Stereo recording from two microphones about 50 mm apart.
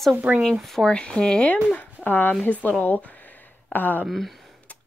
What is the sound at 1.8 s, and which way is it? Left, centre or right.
Speech, left.